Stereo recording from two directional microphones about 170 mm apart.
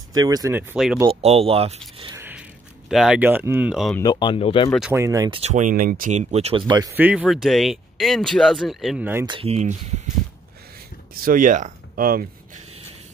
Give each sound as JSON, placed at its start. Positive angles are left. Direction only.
{"t": 0.1, "sound": "speech", "side_deg": -20}
{"t": 1.2, "sound": "speech", "side_deg": -35}
{"t": 2.1, "sound": "a sound", "side_deg": -10}
{"t": 2.9, "sound": "speech", "side_deg": -5}
{"t": 4.0, "sound": "speech", "side_deg": 25}
{"t": 4.9, "sound": "speech", "side_deg": -20}
{"t": 5.3, "sound": "speech", "side_deg": -40}
{"t": 6.9, "sound": "speech", "side_deg": -10}
{"t": 9.2, "sound": "speech", "side_deg": -30}
{"t": 11.1, "sound": "speech", "side_deg": -55}